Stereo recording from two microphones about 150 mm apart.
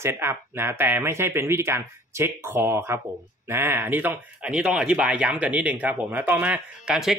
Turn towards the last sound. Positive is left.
turn(degrees=-5)  # may be behind; listen again after turning